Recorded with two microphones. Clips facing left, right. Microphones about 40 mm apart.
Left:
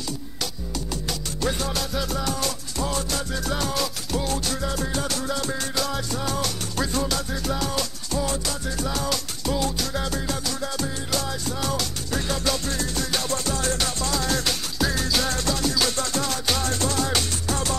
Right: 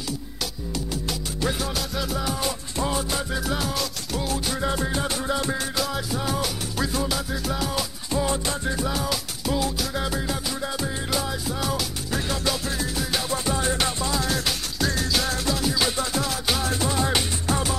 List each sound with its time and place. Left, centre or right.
1.4 s music: centre
4.6 s music: right
8.1 s music: right
8.8 s music: centre
14.2 s music: centre